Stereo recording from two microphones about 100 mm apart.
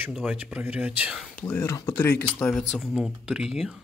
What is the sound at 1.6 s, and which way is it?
Speech, 30° left (ahead or behind).